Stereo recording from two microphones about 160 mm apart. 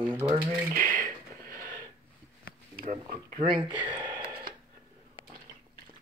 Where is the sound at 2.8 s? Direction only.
55° right (ahead or behind).